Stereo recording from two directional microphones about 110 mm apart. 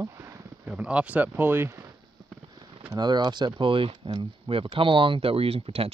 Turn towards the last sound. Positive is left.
turn(degrees=-60)  # may be behind; listen again after turning